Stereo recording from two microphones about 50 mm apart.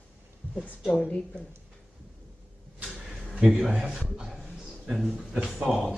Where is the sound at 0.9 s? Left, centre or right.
Centre.